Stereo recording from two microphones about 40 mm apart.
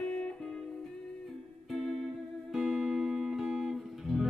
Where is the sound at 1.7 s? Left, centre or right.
Centre.